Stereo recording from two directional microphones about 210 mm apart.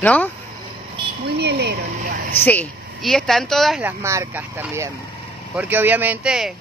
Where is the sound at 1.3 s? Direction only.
50° right (ahead or behind).